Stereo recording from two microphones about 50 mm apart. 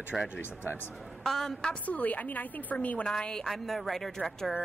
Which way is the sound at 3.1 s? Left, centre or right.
Centre.